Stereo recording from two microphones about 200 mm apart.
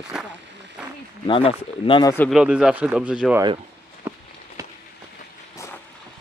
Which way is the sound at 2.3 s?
5° right (ahead or behind).